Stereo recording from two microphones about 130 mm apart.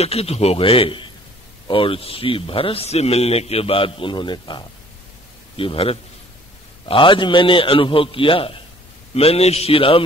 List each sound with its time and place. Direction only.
0.0 s a man's voice: 50° left (ahead or behind)